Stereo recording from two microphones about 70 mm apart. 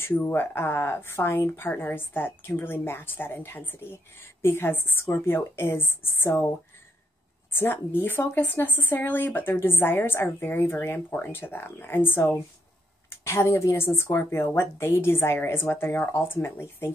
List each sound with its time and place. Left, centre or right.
0.0 s speech: left
7.5 s speech: left